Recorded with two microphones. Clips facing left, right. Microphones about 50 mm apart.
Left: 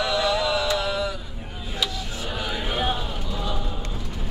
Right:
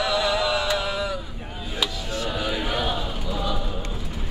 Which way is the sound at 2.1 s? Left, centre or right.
Centre.